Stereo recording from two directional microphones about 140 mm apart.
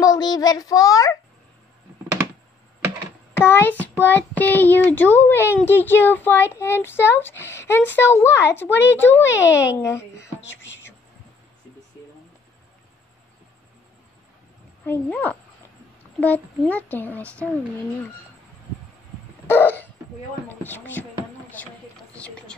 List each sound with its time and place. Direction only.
0.0 s a child's voice: 25° left (ahead or behind)
3.3 s a child's voice: 15° left (ahead or behind)
14.9 s speech: 10° left (ahead or behind)
17.2 s a woman's voice: 15° right (ahead or behind)
19.4 s hiccup: 15° left (ahead or behind)
20.4 s speech: 15° left (ahead or behind)
22.1 s a sound: 10° left (ahead or behind)